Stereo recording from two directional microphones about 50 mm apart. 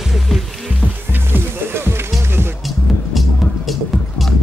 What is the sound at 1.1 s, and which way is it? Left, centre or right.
Music, right.